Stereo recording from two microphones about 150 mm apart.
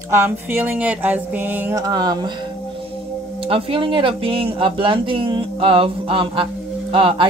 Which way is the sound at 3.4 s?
40° right (ahead or behind).